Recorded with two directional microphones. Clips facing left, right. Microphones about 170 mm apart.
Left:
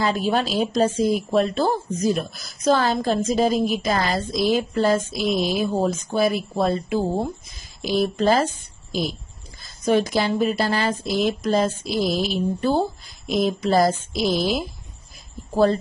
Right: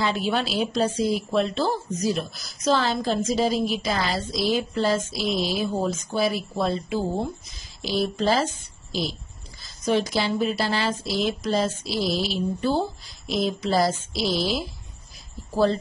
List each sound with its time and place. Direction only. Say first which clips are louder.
0.0 s speech: left 3 dB; 45° left (ahead or behind)
9.6 s speech: left 3 dB; 50° left (ahead or behind)